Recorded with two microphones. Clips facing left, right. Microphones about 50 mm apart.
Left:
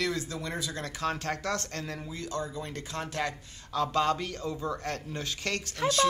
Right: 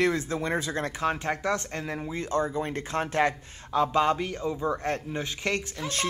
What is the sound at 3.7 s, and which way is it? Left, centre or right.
A man's voice, right.